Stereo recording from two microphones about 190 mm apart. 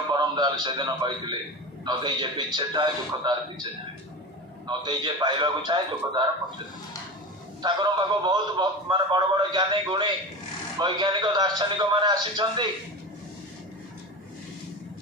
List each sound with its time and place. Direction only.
0.1 s a man's voice: 25° right (ahead or behind)
4.6 s a man's voice: 25° right (ahead or behind)
7.6 s a man's voice: 25° right (ahead or behind)